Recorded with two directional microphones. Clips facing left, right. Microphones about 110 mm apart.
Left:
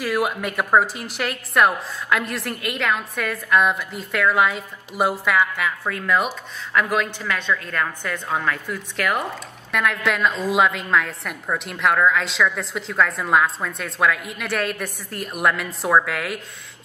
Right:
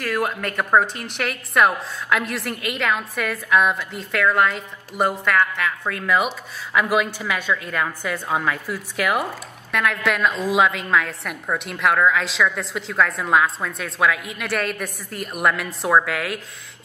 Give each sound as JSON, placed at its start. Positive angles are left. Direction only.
{"t": 0.0, "sound": "a woman's voice", "side_deg": 10}